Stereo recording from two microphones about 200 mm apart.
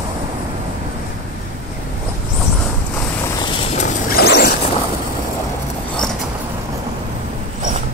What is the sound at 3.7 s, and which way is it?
Vehicle, 50° left (ahead or behind).